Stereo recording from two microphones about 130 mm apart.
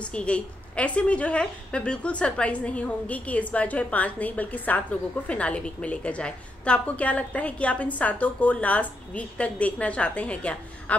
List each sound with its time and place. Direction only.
0.0 s a woman's voice: 10° left (ahead or behind)